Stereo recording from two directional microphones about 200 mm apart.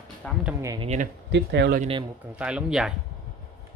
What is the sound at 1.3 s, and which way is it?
Speech, 60° right (ahead or behind).